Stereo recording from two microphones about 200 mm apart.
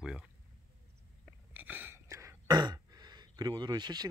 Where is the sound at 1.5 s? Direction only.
10° right (ahead or behind).